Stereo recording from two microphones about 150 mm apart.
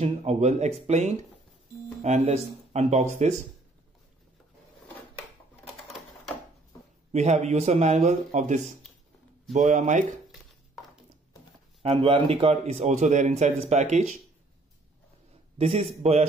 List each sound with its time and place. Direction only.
0.0 s a man's voice: 45° right (ahead or behind)
5.8 s a sound: centre (ahead or behind)
7.1 s a man's voice: 50° right (ahead or behind)
11.8 s a man's voice: 40° right (ahead or behind)
15.5 s a man's voice: 40° right (ahead or behind)